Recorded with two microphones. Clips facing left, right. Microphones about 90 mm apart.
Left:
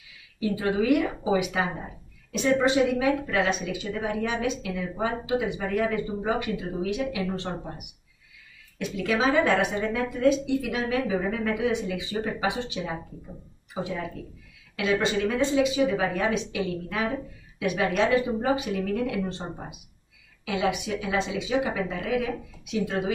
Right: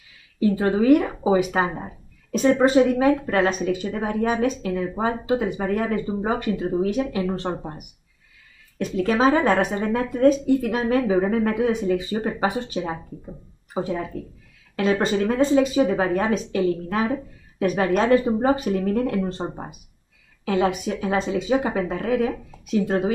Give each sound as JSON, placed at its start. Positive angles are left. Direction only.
{"t": 0.4, "sound": "speech", "side_deg": -40}